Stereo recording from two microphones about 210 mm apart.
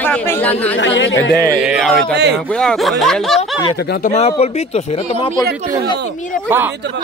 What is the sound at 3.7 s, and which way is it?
Speech, 45° left (ahead or behind).